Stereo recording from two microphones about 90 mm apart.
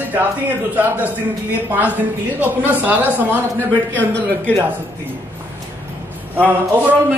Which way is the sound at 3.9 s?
20° left (ahead or behind).